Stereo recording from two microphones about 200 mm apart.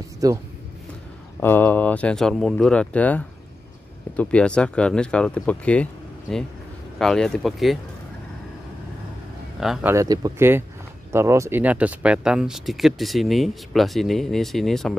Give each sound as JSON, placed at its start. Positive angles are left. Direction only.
{"t": 0.2, "sound": "speech", "side_deg": -20}
{"t": 1.4, "sound": "speech", "side_deg": 10}
{"t": 7.0, "sound": "speech", "side_deg": 5}
{"t": 9.6, "sound": "speech", "side_deg": -5}
{"t": 9.9, "sound": "speech", "side_deg": -20}